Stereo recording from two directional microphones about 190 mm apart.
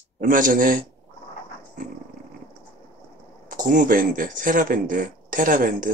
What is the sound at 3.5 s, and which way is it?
Speech, 45° right (ahead or behind).